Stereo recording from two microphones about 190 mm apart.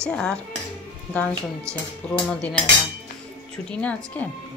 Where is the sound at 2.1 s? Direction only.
5° left (ahead or behind).